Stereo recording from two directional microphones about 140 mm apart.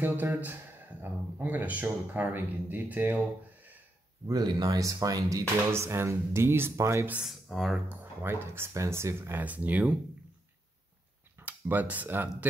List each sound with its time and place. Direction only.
0.0 s speech: 15° right (ahead or behind)
4.3 s speech: 30° right (ahead or behind)
7.2 s speech: centre (ahead or behind)
11.3 s speech: 15° right (ahead or behind)